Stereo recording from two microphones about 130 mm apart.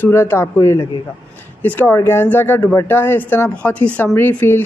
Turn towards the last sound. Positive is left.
turn(degrees=15)  # may be behind; listen again after turning